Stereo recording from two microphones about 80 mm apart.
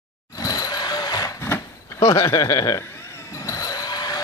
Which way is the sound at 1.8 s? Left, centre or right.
Left.